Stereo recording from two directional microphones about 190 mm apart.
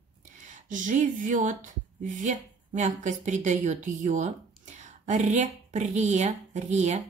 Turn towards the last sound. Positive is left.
turn(degrees=-35)  # may be behind; listen again after turning